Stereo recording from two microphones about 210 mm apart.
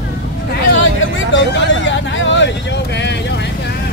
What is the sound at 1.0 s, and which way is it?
Vehicle, 60° left (ahead or behind).